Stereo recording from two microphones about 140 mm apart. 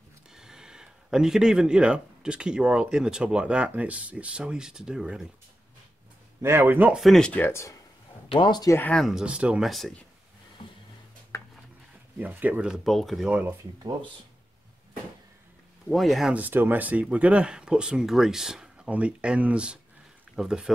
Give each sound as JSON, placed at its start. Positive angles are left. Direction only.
{"t": 0.3, "sound": "speech", "side_deg": -5}
{"t": 6.4, "sound": "speech", "side_deg": -15}
{"t": 7.0, "sound": "speech", "side_deg": 5}
{"t": 8.3, "sound": "speech", "side_deg": 30}
{"t": 8.7, "sound": "speech", "side_deg": 10}
{"t": 9.0, "sound": "speech", "side_deg": -5}
{"t": 12.2, "sound": "speech", "side_deg": -10}
{"t": 15.9, "sound": "speech", "side_deg": 0}
{"t": 16.3, "sound": "speech", "side_deg": -15}